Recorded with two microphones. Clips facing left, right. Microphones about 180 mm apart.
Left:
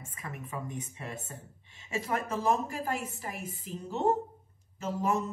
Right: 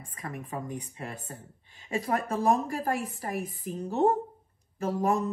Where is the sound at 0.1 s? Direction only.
45° right (ahead or behind).